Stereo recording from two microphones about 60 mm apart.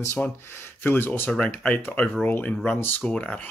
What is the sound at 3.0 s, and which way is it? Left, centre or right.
Speech, centre.